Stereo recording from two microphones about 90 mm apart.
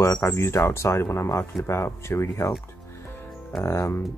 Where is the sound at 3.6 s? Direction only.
30° left (ahead or behind).